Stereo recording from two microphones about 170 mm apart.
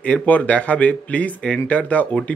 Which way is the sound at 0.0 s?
5° left (ahead or behind).